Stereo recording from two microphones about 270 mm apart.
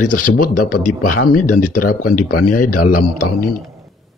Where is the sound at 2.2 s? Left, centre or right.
Left.